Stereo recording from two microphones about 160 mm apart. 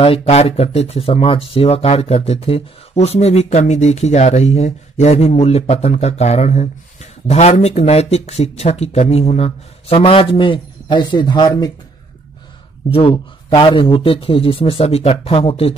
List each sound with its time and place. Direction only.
0.0 s speech: 35° left (ahead or behind)
12.9 s speech: 35° left (ahead or behind)